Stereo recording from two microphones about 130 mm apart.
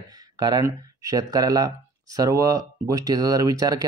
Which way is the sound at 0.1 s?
30° right (ahead or behind).